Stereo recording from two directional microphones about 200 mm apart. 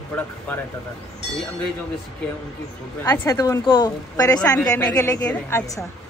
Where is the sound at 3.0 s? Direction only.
10° left (ahead or behind).